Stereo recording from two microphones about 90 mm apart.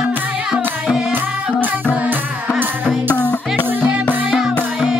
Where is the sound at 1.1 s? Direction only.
20° right (ahead or behind).